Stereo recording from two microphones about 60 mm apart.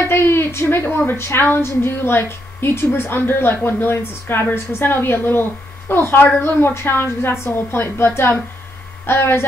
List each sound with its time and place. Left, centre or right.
0.0 s a woman's voice: left